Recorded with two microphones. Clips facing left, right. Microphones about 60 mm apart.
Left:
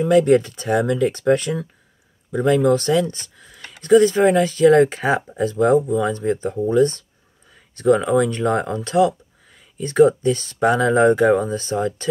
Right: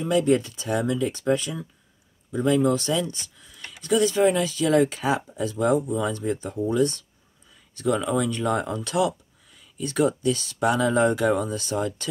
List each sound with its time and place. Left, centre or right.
0.0 s speech: left